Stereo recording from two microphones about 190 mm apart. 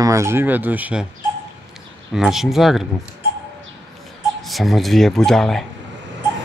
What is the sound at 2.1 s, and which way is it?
Speech, centre (ahead or behind).